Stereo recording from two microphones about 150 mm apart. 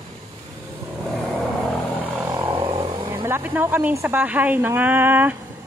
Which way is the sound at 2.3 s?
35° right (ahead or behind).